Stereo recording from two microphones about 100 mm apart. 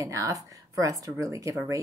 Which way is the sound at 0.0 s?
35° right (ahead or behind).